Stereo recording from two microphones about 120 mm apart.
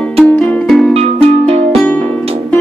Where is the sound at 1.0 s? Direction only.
55° right (ahead or behind).